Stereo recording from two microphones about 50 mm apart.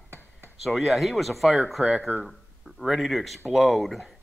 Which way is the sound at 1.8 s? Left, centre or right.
Right.